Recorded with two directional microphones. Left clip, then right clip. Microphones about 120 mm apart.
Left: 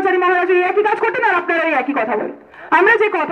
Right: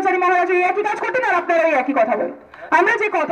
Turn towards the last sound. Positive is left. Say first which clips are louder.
# left 4 dB
turn(degrees=-50)  # may be behind; listen again after turning